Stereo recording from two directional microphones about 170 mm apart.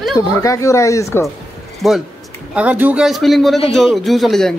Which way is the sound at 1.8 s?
Centre (ahead or behind).